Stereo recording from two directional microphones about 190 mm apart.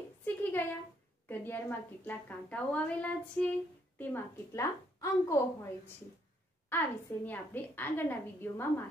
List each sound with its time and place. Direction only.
0.2 s a sound: 10° left (ahead or behind)
1.3 s a woman's voice: 10° left (ahead or behind)
6.7 s a woman's voice: 10° left (ahead or behind)